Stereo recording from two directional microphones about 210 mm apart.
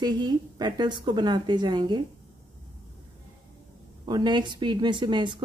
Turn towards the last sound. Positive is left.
turn(degrees=-20)  # may be behind; listen again after turning